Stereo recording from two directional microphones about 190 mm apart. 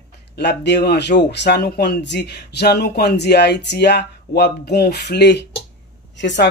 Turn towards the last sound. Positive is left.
turn(degrees=70)  # may be behind; listen again after turning